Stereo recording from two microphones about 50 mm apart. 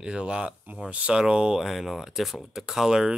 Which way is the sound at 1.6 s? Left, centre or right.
Centre.